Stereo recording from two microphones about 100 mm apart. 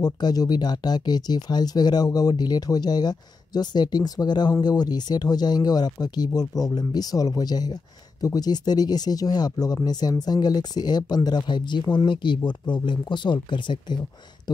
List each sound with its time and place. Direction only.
0.0 s speech: 40° left (ahead or behind)